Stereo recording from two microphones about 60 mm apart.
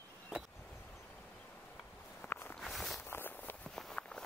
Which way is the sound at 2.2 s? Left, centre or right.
Left.